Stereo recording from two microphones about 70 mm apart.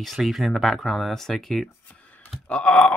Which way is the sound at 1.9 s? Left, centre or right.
Centre.